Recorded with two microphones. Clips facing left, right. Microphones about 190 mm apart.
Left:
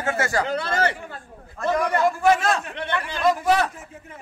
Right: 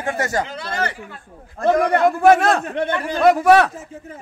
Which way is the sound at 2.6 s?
45° right (ahead or behind).